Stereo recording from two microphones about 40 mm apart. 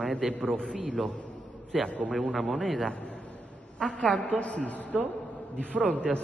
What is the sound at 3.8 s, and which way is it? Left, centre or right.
A woman's voice, left.